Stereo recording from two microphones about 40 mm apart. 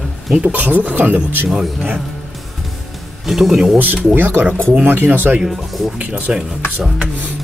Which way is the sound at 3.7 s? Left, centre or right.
Right.